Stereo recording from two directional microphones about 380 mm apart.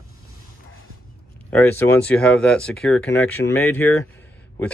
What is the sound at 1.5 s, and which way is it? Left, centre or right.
Speech, centre.